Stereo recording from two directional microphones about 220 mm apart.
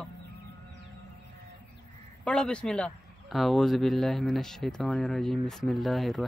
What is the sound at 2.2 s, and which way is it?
Speech, 5° left (ahead or behind).